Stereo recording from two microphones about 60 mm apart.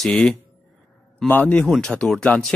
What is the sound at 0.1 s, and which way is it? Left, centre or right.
Speech, centre.